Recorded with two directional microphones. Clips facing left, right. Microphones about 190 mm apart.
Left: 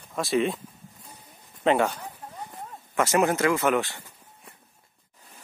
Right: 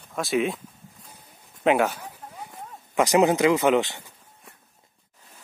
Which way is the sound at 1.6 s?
5° right (ahead or behind).